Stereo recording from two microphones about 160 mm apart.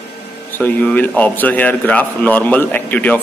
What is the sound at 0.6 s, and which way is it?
A man's voice, 10° left (ahead or behind).